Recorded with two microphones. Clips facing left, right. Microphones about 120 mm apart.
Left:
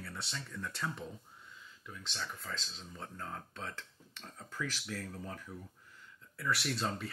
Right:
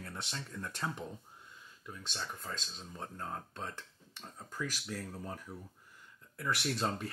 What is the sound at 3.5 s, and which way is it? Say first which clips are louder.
Speech: right 1 dB; 15° right (ahead or behind).